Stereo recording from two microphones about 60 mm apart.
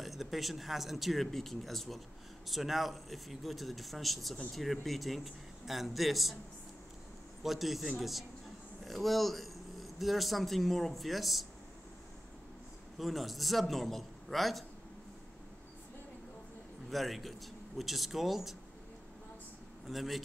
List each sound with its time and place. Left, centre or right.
0.0 s speech: centre
7.4 s speech: centre
12.9 s speech: centre
16.9 s speech: centre
19.9 s speech: centre